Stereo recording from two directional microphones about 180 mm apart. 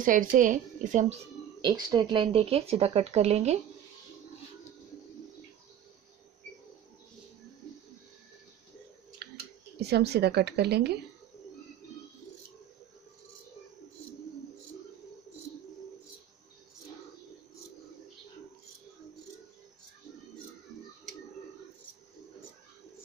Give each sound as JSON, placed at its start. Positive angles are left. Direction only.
{"t": 0.0, "sound": "a woman's voice", "side_deg": -50}
{"t": 1.6, "sound": "speech", "side_deg": -25}
{"t": 9.2, "sound": "a sound", "side_deg": -60}
{"t": 9.8, "sound": "a woman's voice", "side_deg": -65}